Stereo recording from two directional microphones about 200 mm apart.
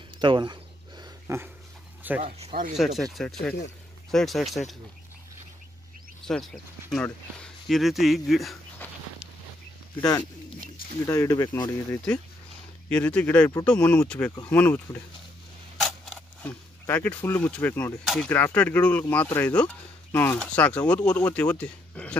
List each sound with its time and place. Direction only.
0.2 s a sound: 25° right (ahead or behind)
1.2 s dog: 10° right (ahead or behind)
2.2 s speech: 30° right (ahead or behind)
2.7 s speech: centre (ahead or behind)
6.2 s speech: centre (ahead or behind)
9.9 s speech: 20° left (ahead or behind)
12.9 s speech: 5° left (ahead or behind)